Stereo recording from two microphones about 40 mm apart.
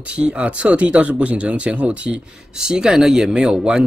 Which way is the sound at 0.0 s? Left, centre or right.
Right.